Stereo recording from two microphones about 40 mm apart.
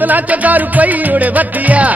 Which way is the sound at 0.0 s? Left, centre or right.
Right.